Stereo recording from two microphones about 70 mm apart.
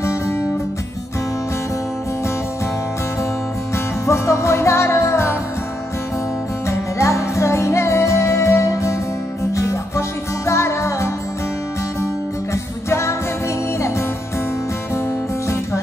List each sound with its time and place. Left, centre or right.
0.0 s music: left
3.7 s music: left
6.7 s music: left
13.7 s music: left